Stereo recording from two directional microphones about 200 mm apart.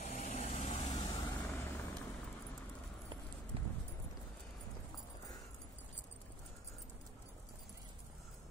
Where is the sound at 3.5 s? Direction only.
30° right (ahead or behind).